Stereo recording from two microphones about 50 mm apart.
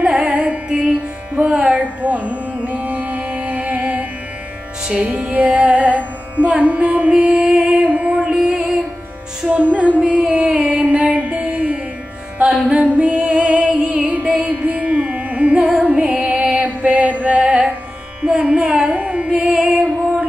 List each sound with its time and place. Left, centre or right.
0.2 s music: right
4.8 s music: centre
5.3 s carnatic music: right
6.6 s music: right
8.3 s music: centre
14.0 s music: right
15.6 s music: centre
16.3 s music: right; by 19.8 s centre